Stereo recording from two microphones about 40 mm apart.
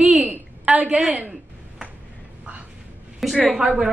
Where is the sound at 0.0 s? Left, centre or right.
Right.